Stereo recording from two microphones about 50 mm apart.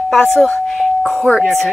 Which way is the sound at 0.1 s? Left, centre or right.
Centre.